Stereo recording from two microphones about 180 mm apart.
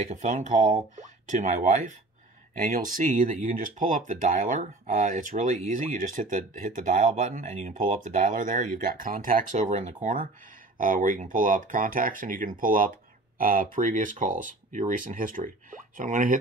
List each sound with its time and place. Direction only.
0.1 s speech: 45° right (ahead or behind)